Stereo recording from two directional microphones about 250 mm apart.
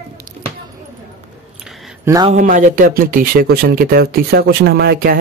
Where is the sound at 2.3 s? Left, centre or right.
Right.